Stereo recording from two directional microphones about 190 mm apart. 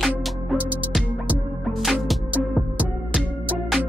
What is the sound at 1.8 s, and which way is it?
Music, centre (ahead or behind).